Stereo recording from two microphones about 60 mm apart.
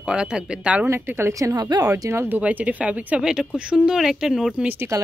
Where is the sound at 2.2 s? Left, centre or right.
Right.